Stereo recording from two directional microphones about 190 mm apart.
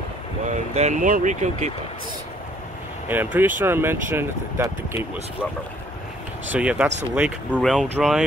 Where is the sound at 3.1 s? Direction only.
10° right (ahead or behind).